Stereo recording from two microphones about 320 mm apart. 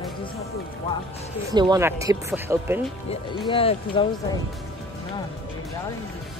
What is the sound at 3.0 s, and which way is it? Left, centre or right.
Speech, centre.